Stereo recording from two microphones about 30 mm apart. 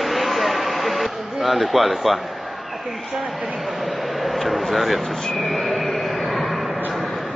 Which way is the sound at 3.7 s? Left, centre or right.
Centre.